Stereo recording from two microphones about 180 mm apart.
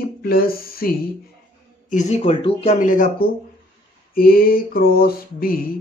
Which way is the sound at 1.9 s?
40° left (ahead or behind).